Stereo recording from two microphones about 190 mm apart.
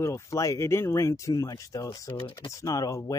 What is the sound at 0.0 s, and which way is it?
Speech, 15° left (ahead or behind).